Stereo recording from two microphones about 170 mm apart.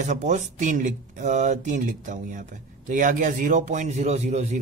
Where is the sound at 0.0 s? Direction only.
45° right (ahead or behind).